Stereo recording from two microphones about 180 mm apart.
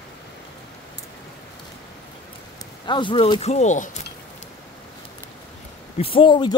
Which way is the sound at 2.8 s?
25° left (ahead or behind).